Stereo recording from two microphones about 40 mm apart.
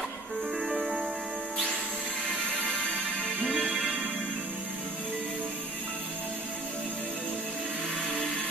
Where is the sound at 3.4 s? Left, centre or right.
Centre.